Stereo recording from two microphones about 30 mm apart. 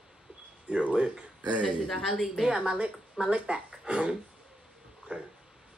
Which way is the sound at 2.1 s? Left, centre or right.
Centre.